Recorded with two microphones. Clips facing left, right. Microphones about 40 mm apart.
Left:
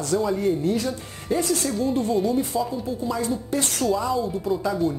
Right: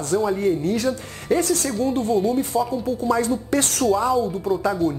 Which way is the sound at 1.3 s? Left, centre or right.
Right.